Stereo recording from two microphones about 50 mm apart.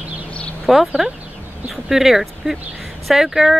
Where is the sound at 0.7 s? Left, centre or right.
Centre.